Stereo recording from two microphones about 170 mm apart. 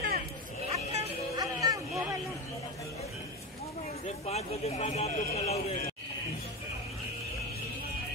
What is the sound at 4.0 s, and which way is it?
A man's voice, 40° left (ahead or behind).